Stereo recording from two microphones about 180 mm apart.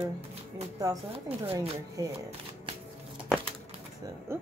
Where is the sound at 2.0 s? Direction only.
20° right (ahead or behind).